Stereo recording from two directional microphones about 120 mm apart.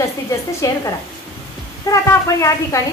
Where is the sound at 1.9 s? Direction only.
25° left (ahead or behind).